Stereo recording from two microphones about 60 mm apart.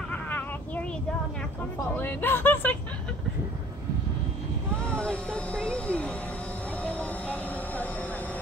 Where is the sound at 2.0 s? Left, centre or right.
Left.